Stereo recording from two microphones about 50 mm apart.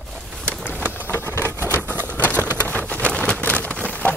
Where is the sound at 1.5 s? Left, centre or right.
Right.